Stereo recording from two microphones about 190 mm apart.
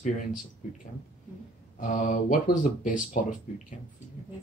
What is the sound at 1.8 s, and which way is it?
Speech, 40° left (ahead or behind).